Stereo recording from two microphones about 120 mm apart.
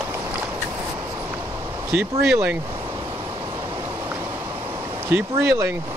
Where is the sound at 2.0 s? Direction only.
20° right (ahead or behind).